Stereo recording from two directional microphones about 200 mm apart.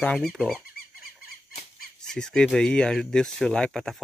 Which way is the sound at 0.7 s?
45° left (ahead or behind).